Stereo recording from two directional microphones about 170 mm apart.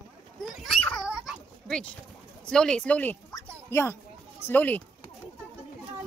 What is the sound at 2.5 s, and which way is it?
A woman's voice, 5° left (ahead or behind).